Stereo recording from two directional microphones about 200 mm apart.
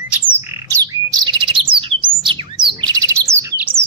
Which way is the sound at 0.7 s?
20° right (ahead or behind).